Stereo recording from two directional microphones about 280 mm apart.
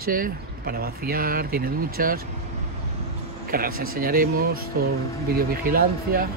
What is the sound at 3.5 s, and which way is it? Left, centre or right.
Speech, right.